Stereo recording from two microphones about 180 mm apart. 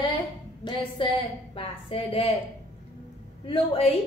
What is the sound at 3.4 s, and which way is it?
Speech, 35° left (ahead or behind).